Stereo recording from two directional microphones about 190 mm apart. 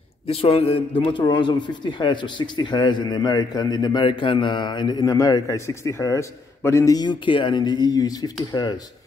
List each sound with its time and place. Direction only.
0.3 s a man's voice: 30° left (ahead or behind)